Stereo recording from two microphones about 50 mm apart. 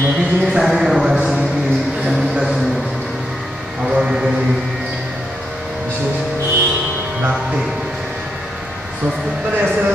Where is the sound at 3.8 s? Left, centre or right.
Centre.